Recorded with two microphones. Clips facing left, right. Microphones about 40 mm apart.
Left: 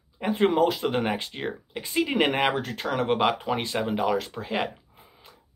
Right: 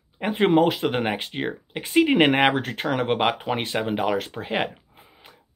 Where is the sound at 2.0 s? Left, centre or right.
Right.